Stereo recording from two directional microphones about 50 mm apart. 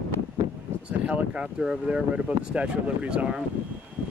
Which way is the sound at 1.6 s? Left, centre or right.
Centre.